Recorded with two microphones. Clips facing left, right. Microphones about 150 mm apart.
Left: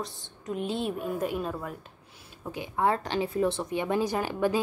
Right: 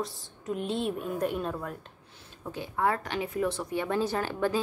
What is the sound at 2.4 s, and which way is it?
A woman's voice, 15° left (ahead or behind).